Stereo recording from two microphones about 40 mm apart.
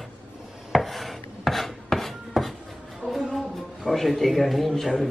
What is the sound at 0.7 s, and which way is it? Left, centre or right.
Filing, centre.